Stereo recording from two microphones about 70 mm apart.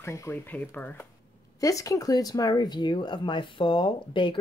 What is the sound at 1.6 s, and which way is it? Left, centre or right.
A woman's voice, left.